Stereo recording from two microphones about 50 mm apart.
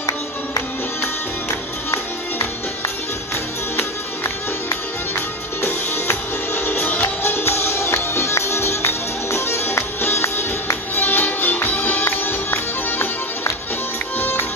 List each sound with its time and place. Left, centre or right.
5.6 s music: left
7.2 s music: left
11.0 s music: left